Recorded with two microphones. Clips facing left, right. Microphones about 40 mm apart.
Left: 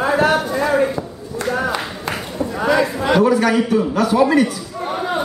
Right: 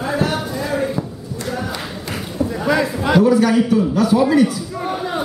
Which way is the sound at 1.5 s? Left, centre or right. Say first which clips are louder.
Left 5 dB; left.